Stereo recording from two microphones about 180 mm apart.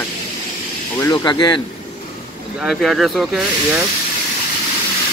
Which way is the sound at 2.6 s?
Centre (ahead or behind).